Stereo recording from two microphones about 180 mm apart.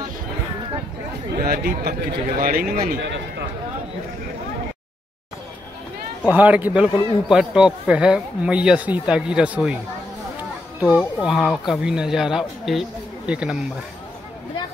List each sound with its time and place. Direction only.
1.4 s speech: 60° right (ahead or behind)
3.0 s speech: 80° right
6.3 s a man's voice: 10° right (ahead or behind)
10.8 s speech: 5° right (ahead or behind)